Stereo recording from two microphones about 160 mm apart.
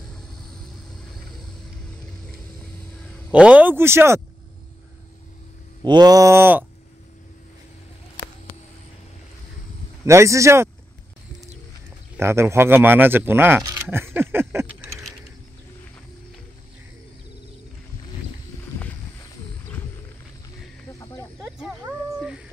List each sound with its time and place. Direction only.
3.3 s speech: 5° right (ahead or behind)
5.9 s a sound: 25° right (ahead or behind)
10.0 s speech: 20° right (ahead or behind)
12.2 s speech: 15° right (ahead or behind)
13.7 s a sound: 15° right (ahead or behind)
21.4 s snake: centre (ahead or behind)